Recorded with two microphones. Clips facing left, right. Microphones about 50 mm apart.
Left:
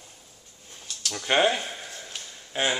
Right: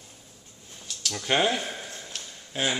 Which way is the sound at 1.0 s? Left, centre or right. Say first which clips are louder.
Left 2 dB; centre.